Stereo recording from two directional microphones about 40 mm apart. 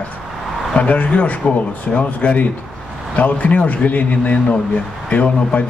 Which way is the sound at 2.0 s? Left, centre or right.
Left.